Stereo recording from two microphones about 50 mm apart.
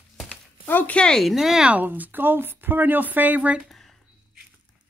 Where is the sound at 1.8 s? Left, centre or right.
Right.